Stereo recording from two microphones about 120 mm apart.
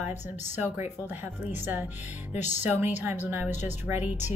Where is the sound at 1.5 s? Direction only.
15° right (ahead or behind).